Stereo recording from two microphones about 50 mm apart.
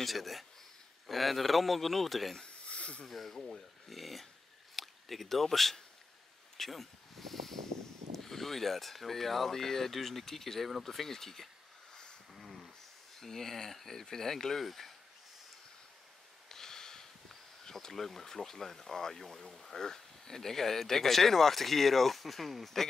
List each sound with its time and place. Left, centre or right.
0.0 s speech: centre
2.3 s a sound: left
3.1 s speech: centre
12.4 s a sound: centre
13.2 s speech: centre
16.4 s speech: centre